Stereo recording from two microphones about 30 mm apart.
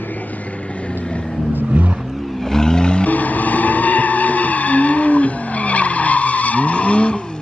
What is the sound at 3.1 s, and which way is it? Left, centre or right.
Vehicle, left.